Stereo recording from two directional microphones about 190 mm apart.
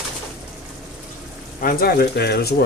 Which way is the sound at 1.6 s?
50° left (ahead or behind).